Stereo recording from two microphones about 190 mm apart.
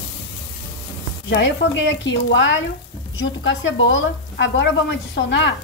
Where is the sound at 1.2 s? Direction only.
65° left (ahead or behind).